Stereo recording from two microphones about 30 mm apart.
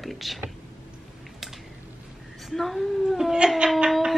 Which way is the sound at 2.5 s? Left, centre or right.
Centre.